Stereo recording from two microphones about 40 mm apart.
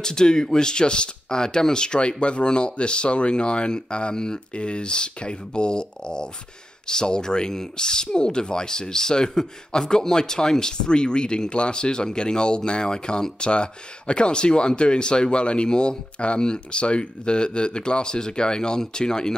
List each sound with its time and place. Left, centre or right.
0.0 s speech: centre